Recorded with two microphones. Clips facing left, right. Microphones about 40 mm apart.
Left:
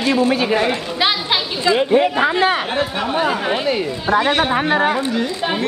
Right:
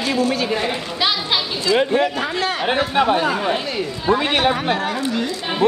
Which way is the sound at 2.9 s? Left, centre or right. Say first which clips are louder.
Right 5 dB; centre.